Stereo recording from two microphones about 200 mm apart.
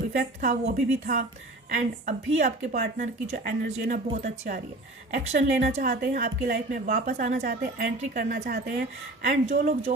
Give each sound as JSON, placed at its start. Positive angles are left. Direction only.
{"t": 0.4, "sound": "a woman's voice", "side_deg": -40}